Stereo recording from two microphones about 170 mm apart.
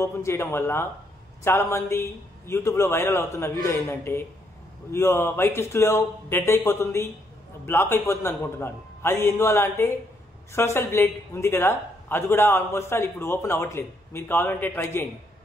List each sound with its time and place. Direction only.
0.0 s a woman's voice: 15° left (ahead or behind)